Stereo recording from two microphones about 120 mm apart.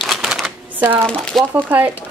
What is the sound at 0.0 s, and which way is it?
Typewriter, centre (ahead or behind).